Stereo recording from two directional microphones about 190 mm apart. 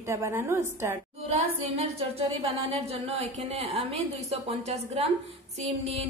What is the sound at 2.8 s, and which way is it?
A woman's voice, 30° right (ahead or behind).